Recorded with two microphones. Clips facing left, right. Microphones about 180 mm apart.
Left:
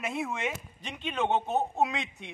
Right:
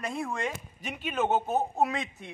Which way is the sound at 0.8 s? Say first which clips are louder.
Right 1 dB; 5° right (ahead or behind).